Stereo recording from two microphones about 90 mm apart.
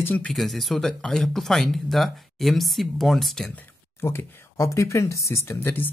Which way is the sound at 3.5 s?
15° left (ahead or behind).